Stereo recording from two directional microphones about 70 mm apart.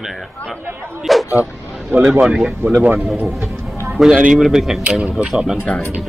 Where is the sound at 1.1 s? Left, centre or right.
Centre.